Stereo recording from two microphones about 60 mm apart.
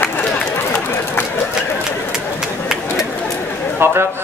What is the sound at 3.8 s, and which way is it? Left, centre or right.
Speech, right.